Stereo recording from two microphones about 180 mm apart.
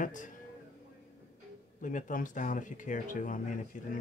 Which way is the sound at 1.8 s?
45° left (ahead or behind).